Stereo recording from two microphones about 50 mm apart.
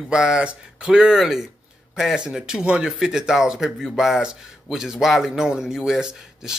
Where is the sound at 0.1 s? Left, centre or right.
Centre.